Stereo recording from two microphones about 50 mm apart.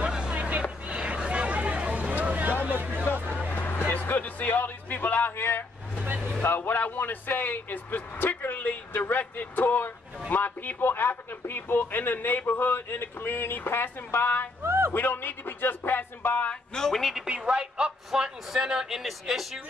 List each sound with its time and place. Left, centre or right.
0.0 s vehicle: centre
0.4 s a sound: right
2.6 s hubbub: right
3.5 s music: left
6.4 s speech: left
9.2 s a sound: left
10.3 s speech: left
14.6 s a sound: right
15.0 s speech: left
16.7 s a woman's voice: centre
17.3 s speech: centre